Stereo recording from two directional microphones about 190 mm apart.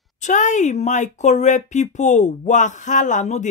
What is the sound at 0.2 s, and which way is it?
Speech, 40° left (ahead or behind).